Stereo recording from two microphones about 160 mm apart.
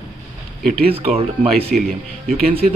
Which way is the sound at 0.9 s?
35° right (ahead or behind).